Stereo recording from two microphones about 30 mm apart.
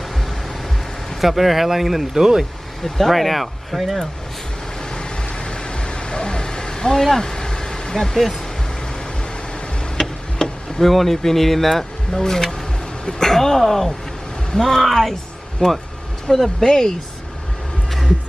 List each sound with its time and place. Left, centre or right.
1.2 s speech: centre
2.1 s speech: centre
2.8 s speech: centre
5.9 s a sound: left
7.9 s speech: centre
9.9 s tick-tock: centre
10.9 s speech: centre
12.1 s speech: centre
15.6 s speech: left
16.3 s speech: centre